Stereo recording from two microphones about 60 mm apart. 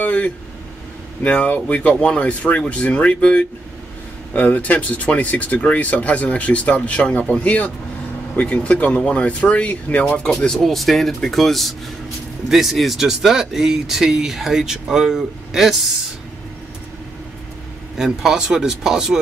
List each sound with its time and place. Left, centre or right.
0.0 s vehicle: left
1.2 s speech: left
10.6 s speech: centre
17.9 s speech: centre